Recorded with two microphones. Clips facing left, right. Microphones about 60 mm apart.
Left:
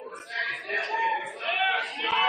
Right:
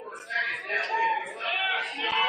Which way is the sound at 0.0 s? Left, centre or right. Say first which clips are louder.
Even; centre.